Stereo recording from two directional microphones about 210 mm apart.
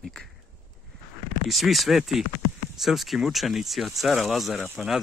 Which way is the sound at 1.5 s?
Centre (ahead or behind).